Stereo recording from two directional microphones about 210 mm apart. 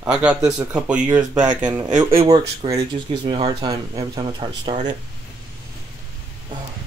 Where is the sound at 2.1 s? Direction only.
20° right (ahead or behind).